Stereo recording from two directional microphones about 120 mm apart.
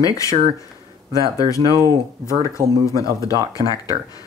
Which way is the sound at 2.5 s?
25° left (ahead or behind).